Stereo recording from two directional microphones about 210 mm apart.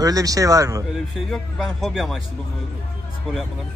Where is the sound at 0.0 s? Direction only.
15° right (ahead or behind).